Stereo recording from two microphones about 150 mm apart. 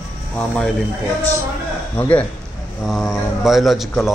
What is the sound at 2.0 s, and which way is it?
A man's voice, 10° left (ahead or behind).